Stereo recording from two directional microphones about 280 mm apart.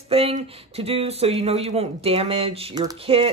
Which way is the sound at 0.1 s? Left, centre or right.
Centre.